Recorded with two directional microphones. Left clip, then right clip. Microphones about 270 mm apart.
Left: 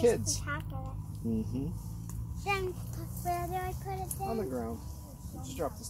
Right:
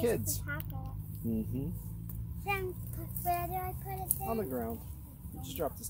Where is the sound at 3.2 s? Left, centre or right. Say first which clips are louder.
Even; right.